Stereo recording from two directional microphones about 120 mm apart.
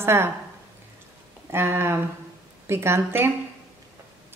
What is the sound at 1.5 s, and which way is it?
A woman's voice, 20° right (ahead or behind).